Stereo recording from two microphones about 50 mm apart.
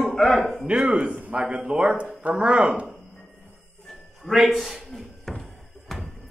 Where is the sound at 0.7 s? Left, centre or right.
Centre.